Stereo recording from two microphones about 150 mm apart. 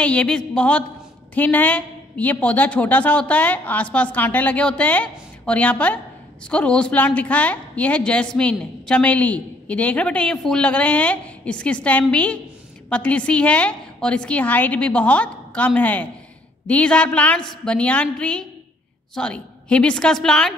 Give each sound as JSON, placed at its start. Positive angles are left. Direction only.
{"t": 0.0, "sound": "a woman's voice", "side_deg": 5}